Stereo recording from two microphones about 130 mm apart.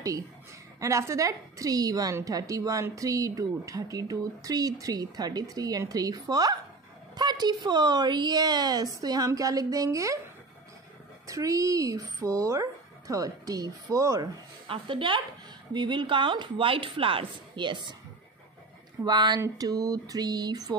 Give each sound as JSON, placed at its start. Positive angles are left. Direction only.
{"t": 0.7, "sound": "a woman's voice", "side_deg": -25}
{"t": 11.2, "sound": "a woman's voice", "side_deg": -25}
{"t": 14.7, "sound": "a woman's voice", "side_deg": -40}
{"t": 19.0, "sound": "a woman's voice", "side_deg": -35}